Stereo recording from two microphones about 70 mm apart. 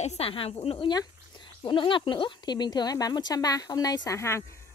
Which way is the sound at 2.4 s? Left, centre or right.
Left.